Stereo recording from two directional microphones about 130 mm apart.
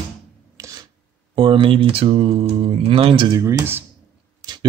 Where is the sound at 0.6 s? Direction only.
25° right (ahead or behind).